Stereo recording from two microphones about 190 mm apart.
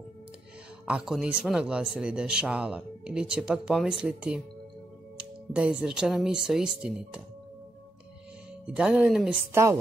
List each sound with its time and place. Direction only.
0.8 s speech: 5° right (ahead or behind)
5.5 s speech: 5° right (ahead or behind)
8.7 s speech: 5° right (ahead or behind)
9.5 s a woman's voice: 15° right (ahead or behind)